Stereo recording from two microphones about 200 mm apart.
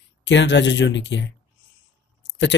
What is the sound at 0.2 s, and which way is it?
Speech, 65° left (ahead or behind).